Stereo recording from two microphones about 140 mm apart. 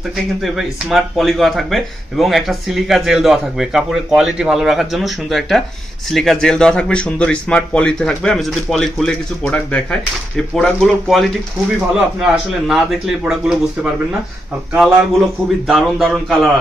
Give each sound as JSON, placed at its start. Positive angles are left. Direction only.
{"t": 0.9, "sound": "speech", "side_deg": 0}
{"t": 14.8, "sound": "speech", "side_deg": 0}